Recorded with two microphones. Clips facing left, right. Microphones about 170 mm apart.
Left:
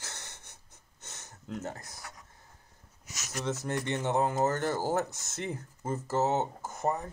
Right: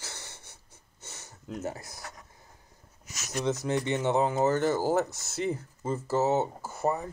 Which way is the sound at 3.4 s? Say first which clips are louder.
Right 4 dB; 15° right (ahead or behind).